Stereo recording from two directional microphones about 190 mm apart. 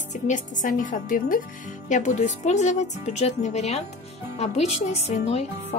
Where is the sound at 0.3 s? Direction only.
40° left (ahead or behind).